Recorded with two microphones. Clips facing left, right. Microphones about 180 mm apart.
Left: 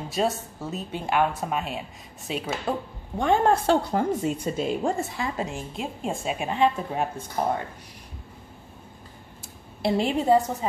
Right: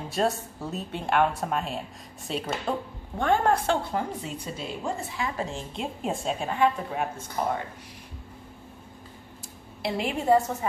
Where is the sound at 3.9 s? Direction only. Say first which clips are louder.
Left 6 dB; 45° left (ahead or behind).